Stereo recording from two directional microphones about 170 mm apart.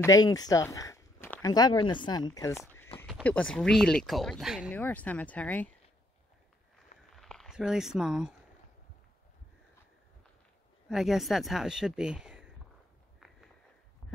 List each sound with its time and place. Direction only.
0.0 s speech: 20° left (ahead or behind)
2.9 s a sound: 35° left (ahead or behind)
3.3 s speech: 5° left (ahead or behind)
4.6 s speech: 10° left (ahead or behind)
7.2 s speech: centre (ahead or behind)
10.9 s speech: centre (ahead or behind)